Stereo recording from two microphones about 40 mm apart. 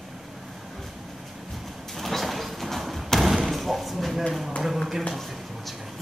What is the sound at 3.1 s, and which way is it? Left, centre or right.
Slam, centre.